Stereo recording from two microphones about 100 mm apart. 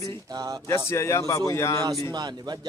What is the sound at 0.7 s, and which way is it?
A man's voice, 25° left (ahead or behind).